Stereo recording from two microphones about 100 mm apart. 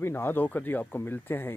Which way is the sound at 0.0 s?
20° left (ahead or behind).